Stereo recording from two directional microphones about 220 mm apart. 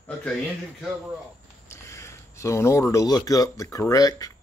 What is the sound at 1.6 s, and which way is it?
Speech, 10° left (ahead or behind).